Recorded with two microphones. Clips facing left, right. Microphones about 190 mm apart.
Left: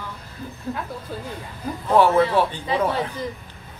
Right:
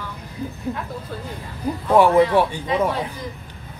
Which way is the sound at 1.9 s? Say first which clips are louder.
Right 2 dB; 15° right (ahead or behind).